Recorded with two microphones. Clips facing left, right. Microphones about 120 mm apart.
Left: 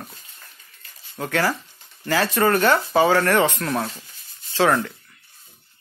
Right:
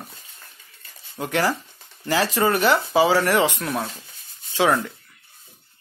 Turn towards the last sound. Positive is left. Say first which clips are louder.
# left 1 dB
turn(degrees=-15)  # may be behind; listen again after turning